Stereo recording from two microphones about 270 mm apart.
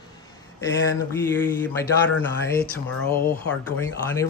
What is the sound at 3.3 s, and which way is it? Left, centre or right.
Speech, centre.